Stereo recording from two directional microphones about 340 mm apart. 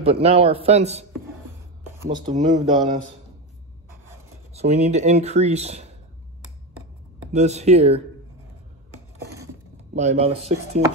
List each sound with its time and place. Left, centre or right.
0.0 s a man's voice: centre
2.1 s a man's voice: centre
4.6 s speech: centre
7.3 s speech: centre
9.9 s a man's voice: centre